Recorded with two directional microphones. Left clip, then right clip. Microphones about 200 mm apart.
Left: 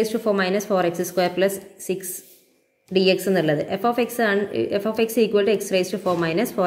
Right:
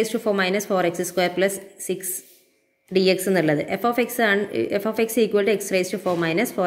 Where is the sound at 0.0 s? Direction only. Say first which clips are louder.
Even; 10° right (ahead or behind).